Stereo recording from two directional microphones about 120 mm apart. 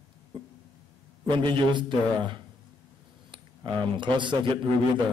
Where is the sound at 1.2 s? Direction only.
40° right (ahead or behind).